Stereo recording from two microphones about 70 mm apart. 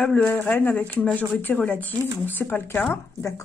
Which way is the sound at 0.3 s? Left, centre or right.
Left.